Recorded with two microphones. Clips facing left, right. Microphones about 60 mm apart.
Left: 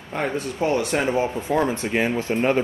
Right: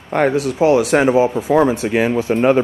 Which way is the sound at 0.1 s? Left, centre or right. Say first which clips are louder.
Right 10 dB; right.